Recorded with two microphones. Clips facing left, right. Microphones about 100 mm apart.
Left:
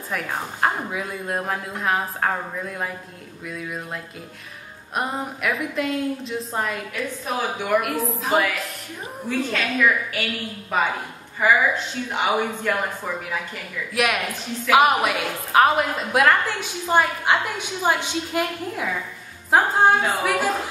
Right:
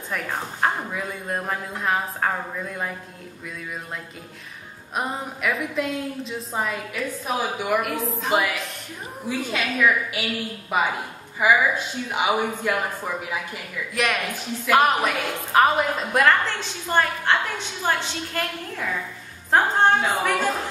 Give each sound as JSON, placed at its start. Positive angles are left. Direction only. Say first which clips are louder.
{"t": 0.1, "sound": "a woman's voice", "louder": "left 1 dB", "side_deg": 0}
{"t": 13.9, "sound": "a woman's voice", "louder": "left 2 dB", "side_deg": 5}